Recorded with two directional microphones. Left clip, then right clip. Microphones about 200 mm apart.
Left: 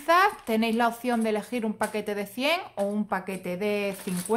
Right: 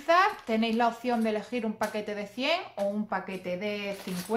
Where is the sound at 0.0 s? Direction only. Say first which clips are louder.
Left 2 dB; 40° left (ahead or behind).